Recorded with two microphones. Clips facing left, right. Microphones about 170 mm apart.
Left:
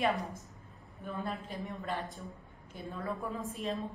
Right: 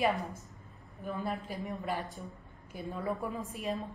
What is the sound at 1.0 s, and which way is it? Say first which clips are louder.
A woman's voice: right 2 dB; centre (ahead or behind).